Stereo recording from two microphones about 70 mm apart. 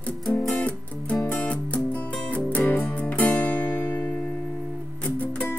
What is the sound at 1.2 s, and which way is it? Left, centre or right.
Music, centre.